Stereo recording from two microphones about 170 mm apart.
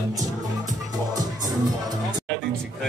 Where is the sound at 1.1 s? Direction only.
20° right (ahead or behind).